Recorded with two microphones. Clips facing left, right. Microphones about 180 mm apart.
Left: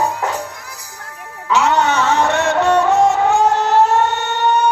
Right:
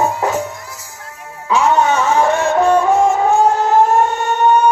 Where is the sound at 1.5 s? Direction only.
70° left (ahead or behind).